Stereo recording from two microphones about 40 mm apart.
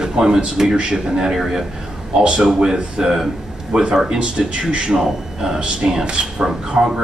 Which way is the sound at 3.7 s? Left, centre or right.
Right.